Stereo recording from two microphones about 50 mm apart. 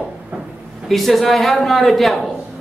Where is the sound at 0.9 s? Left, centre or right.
Centre.